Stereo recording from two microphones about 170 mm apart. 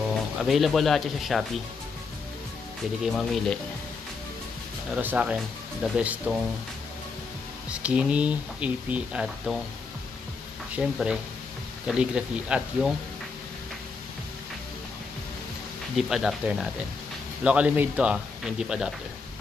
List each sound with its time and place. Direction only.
0.4 s speech: centre (ahead or behind)
3.0 s speech: centre (ahead or behind)
4.9 s speech: 10° right (ahead or behind)
7.7 s speech: 5° right (ahead or behind)
10.7 s speech: 5° right (ahead or behind)
16.0 s speech: centre (ahead or behind)